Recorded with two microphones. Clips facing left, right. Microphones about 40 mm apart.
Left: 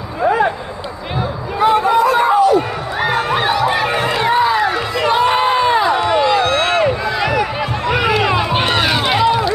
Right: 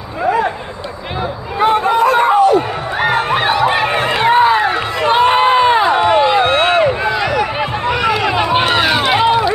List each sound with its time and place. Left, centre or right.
1.6 s a sound: right
5.1 s crowd: right
7.9 s run: centre
8.4 s run: centre